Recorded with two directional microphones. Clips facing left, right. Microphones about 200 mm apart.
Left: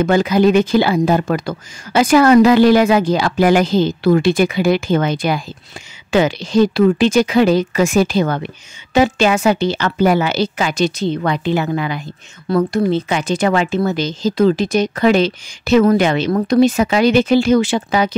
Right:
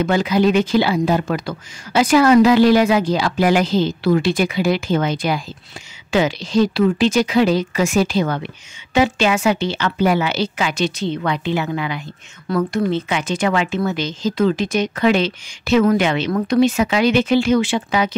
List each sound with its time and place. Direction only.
0.0 s speech: 45° left (ahead or behind)